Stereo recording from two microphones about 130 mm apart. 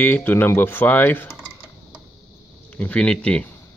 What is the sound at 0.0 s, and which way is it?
Speech, 15° left (ahead or behind).